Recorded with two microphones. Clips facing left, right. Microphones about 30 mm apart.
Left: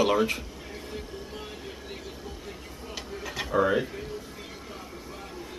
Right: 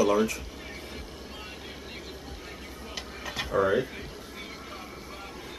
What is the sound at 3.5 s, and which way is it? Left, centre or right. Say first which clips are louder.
Speech: left 1 dB; centre.